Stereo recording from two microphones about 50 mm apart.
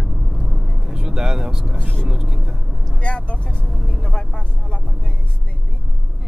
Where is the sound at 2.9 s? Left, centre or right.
Left.